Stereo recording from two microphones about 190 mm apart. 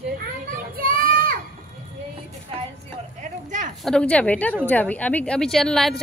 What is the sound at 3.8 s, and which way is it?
A woman's voice, 5° left (ahead or behind).